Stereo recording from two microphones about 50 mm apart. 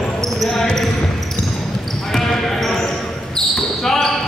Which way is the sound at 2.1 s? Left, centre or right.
Centre.